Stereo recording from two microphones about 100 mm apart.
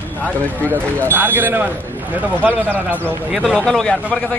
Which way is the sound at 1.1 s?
20° right (ahead or behind).